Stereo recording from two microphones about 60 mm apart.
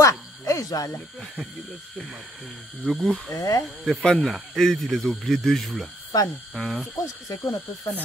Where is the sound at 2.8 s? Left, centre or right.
Centre.